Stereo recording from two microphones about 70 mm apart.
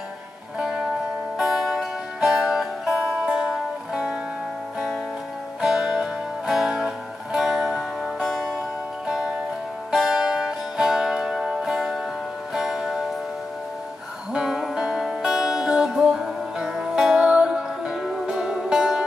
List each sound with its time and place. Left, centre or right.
0.6 s music: centre
5.6 s music: centre
14.3 s music: centre